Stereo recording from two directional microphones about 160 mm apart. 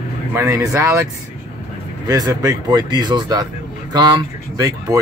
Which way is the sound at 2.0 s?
25° right (ahead or behind).